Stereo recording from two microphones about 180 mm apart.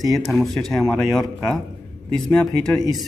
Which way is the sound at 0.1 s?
Centre (ahead or behind).